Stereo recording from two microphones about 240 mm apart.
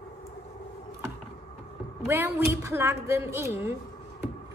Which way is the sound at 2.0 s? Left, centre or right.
Centre.